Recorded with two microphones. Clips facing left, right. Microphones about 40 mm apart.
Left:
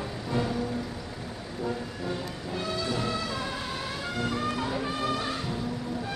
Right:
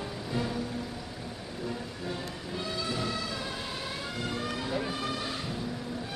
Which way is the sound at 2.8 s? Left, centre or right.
Centre.